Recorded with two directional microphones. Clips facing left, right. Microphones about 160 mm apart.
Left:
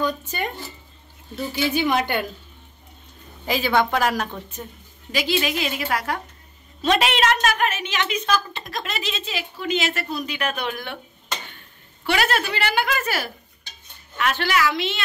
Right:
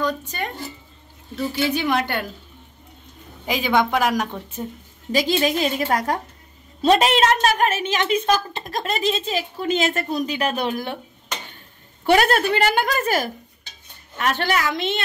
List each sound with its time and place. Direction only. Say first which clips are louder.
0.0 s a woman's voice: even; 5° left (ahead or behind)
3.4 s speech: right 1 dB; 15° right (ahead or behind)
5.1 s a woman's voice: right 4 dB; 40° right (ahead or behind)
12.1 s speech: right 6 dB; 50° right (ahead or behind)